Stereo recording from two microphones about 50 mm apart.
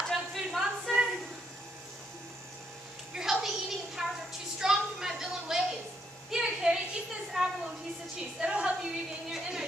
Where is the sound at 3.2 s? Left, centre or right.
Centre.